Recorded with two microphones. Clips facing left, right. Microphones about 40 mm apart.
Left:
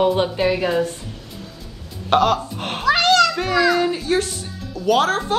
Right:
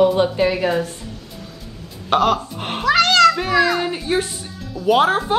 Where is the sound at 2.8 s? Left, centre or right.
Right.